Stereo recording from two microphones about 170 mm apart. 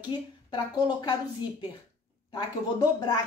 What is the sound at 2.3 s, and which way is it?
Speech, 25° left (ahead or behind).